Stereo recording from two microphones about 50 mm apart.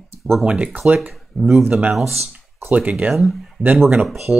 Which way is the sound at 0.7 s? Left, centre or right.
Right.